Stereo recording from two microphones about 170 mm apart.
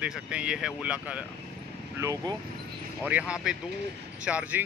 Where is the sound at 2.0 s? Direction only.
20° right (ahead or behind).